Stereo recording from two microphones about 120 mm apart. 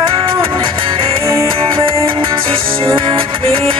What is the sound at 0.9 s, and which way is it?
Music, 45° right (ahead or behind).